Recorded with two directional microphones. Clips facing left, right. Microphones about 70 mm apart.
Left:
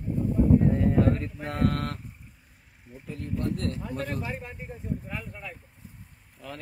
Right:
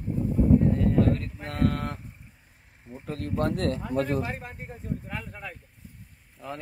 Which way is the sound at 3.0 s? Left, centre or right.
Right.